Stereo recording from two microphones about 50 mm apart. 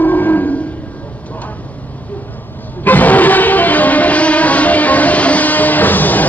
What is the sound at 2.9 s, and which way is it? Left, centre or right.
Music, left.